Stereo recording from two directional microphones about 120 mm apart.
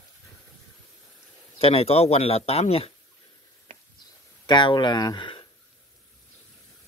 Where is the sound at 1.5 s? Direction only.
55° left (ahead or behind).